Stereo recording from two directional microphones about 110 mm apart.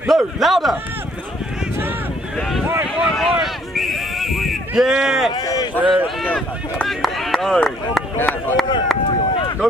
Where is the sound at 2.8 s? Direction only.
5° right (ahead or behind).